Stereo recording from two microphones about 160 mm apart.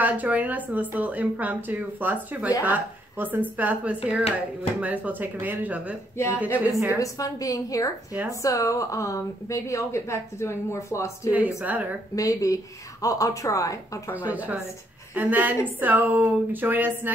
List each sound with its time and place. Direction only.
0.0 s speech: 10° right (ahead or behind)
7.0 s a woman's voice: 20° left (ahead or behind)
8.1 s speech: 10° right (ahead or behind)
8.4 s a woman's voice: 20° left (ahead or behind)
11.3 s speech: 10° right (ahead or behind)
12.2 s a woman's voice: 20° left (ahead or behind)
14.3 s speech: 10° right (ahead or behind)